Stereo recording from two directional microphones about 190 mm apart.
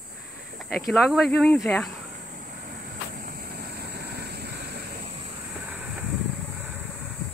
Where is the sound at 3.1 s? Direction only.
50° right (ahead or behind).